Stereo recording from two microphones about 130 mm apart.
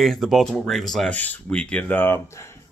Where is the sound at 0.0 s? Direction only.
Centre (ahead or behind).